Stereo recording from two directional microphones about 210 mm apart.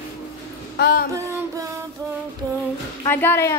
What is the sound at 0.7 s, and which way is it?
Speech, 50° left (ahead or behind).